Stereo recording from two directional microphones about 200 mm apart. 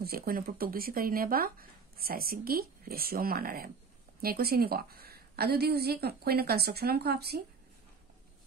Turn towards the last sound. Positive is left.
turn(degrees=-50)  # may be behind; listen again after turning